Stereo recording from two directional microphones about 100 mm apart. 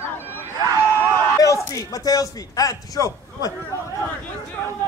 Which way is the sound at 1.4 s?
35° left (ahead or behind).